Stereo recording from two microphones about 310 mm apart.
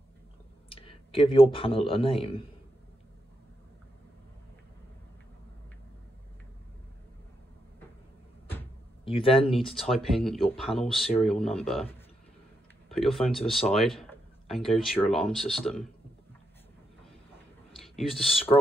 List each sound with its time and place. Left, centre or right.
0.7 s speech: centre
9.0 s speech: centre
9.5 s speech: centre
12.9 s speech: centre
17.7 s speech: centre